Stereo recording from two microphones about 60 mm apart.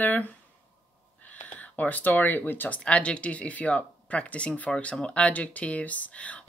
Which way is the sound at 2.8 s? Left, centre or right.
Centre.